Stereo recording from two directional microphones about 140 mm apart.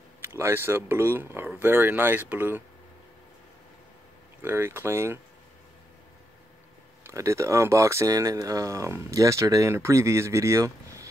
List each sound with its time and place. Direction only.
0.2 s speech: 20° right (ahead or behind)
4.4 s speech: 15° right (ahead or behind)
7.0 s speech: 20° right (ahead or behind)